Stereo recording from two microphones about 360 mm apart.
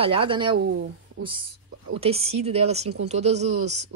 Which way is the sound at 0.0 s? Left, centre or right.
Centre.